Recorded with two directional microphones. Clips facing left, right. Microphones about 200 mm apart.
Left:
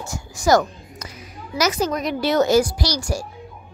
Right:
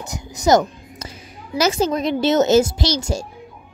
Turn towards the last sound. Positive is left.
turn(degrees=-25)  # may be behind; listen again after turning